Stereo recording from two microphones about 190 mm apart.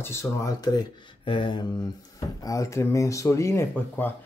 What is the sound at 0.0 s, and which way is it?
Speech, 15° left (ahead or behind).